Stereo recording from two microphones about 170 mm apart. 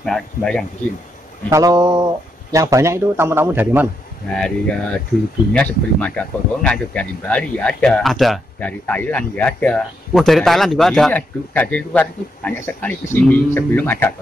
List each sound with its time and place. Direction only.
0.0 s speech: 5° left (ahead or behind)
1.5 s a sound: 20° right (ahead or behind)
2.5 s a man's voice: 20° right (ahead or behind)
4.3 s speech: 5° left (ahead or behind)